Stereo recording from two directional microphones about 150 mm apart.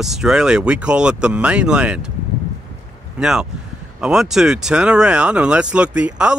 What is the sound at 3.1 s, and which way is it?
Speech, 5° right (ahead or behind).